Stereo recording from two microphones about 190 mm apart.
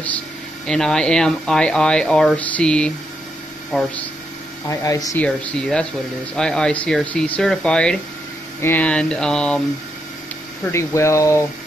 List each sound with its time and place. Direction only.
0.7 s speech: 5° left (ahead or behind)
5.2 s speech: 5° left (ahead or behind)
10.7 s speech: 15° left (ahead or behind)